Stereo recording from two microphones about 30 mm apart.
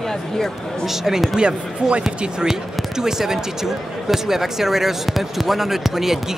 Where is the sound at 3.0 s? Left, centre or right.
Centre.